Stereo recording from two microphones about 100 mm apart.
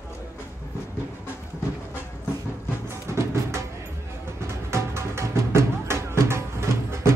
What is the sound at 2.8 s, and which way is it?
Music, 25° right (ahead or behind).